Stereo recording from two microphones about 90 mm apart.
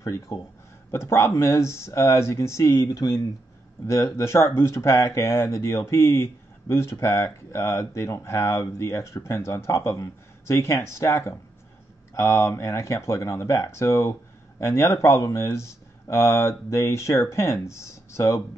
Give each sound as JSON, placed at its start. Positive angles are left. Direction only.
{"t": 0.0, "sound": "speech", "side_deg": 35}